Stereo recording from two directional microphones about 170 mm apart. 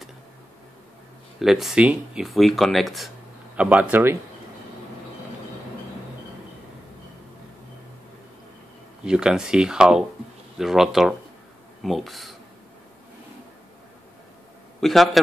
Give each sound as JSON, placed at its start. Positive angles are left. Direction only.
{"t": 1.4, "sound": "speech", "side_deg": 0}
{"t": 9.0, "sound": "speech", "side_deg": -5}
{"t": 14.8, "sound": "a man's voice", "side_deg": 0}